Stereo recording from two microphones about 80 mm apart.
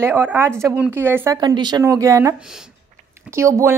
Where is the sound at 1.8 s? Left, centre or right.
Right.